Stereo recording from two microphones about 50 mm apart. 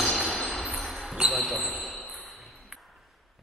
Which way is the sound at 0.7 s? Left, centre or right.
Centre.